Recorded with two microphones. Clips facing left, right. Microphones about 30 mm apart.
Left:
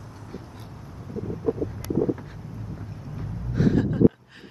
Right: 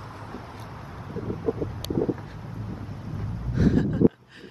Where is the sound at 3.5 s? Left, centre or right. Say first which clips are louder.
Even; centre.